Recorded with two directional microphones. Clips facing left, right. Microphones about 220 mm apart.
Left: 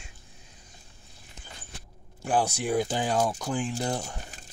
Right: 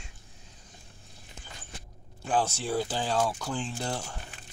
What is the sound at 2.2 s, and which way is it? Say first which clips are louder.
Speech: left 2 dB; 15° left (ahead or behind).